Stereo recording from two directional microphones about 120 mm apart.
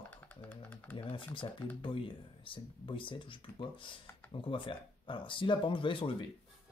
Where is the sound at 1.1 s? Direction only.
45° left (ahead or behind).